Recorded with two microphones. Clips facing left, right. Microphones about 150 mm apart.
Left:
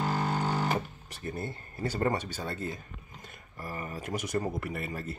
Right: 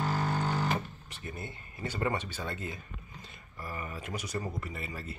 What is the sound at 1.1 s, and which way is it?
Speech, 40° left (ahead or behind).